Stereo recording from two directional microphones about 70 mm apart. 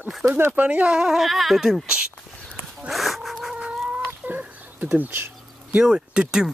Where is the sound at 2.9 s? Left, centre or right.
Centre.